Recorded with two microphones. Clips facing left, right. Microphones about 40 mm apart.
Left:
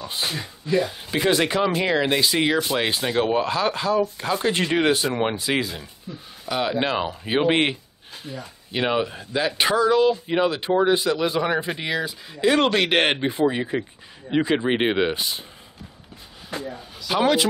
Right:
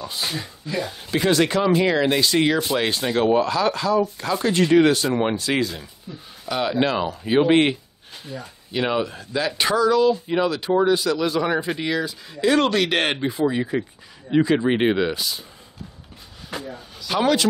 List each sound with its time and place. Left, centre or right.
0.4 s speech: centre
6.8 s speech: centre
16.6 s speech: centre